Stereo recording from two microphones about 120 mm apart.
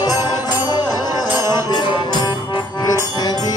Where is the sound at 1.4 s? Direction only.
35° left (ahead or behind).